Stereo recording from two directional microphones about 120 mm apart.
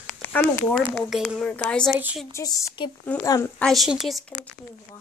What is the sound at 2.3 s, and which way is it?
Speech, 30° left (ahead or behind).